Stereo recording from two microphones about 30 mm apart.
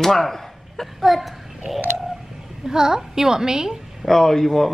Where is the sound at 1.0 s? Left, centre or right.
Centre.